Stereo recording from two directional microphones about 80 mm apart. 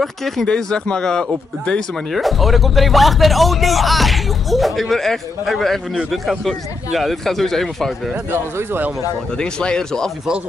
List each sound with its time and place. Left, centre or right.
0.0 s speech: centre
8.3 s speech: right
9.4 s speech: centre